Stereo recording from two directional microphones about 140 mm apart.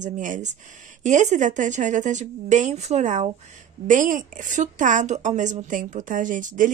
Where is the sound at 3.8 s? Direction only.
70° right (ahead or behind).